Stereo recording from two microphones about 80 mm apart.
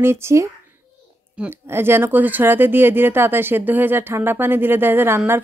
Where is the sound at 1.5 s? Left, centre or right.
Right.